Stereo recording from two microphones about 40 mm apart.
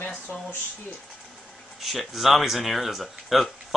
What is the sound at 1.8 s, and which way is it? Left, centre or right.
Speech, centre.